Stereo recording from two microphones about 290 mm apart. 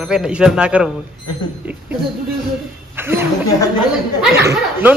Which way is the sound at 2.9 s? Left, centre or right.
Centre.